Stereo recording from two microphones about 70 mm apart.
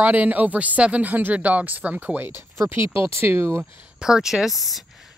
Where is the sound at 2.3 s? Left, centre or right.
Right.